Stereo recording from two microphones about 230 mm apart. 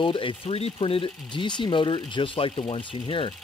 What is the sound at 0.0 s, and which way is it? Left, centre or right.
Speech, left.